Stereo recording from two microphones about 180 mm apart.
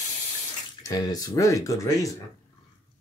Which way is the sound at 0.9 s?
20° left (ahead or behind).